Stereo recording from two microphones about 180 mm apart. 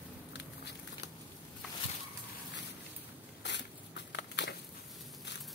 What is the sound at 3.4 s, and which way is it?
Biting, 75° left (ahead or behind).